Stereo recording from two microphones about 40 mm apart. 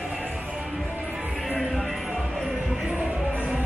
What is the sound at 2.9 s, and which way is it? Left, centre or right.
Music, right.